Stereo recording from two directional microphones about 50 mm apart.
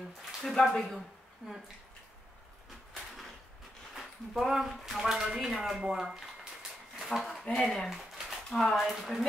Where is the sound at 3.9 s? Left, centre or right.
Centre.